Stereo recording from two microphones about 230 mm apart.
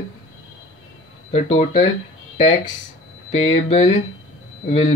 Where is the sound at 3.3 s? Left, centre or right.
Left.